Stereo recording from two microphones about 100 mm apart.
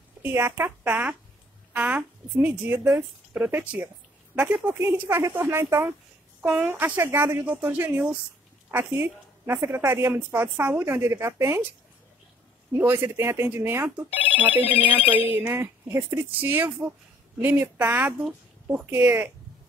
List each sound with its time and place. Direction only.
0.2 s a woman's voice: 25° right (ahead or behind)
4.6 s a woman's voice: 20° right (ahead or behind)
12.7 s a woman's voice: 20° right (ahead or behind)
14.6 s speech: 70° left (ahead or behind)
15.0 s a woman's voice: 20° right (ahead or behind)